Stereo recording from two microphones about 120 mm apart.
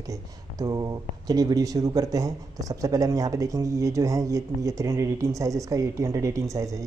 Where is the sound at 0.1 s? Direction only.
30° right (ahead or behind).